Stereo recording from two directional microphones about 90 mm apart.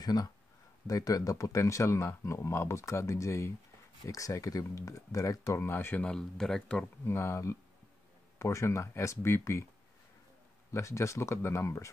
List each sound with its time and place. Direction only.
0.0 s speech: 45° left (ahead or behind); by 6.0 s 25° left (ahead or behind)
6.0 s speech: 10° left (ahead or behind)
7.1 s speech: 30° left (ahead or behind)
10.7 s speech: 30° left (ahead or behind)